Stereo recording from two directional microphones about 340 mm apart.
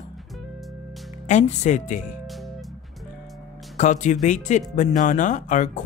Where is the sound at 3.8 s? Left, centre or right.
Left.